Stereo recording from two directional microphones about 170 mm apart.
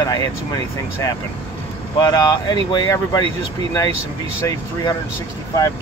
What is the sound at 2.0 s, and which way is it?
Speech, 25° left (ahead or behind).